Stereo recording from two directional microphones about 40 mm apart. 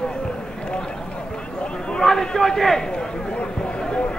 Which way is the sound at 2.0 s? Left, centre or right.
Centre.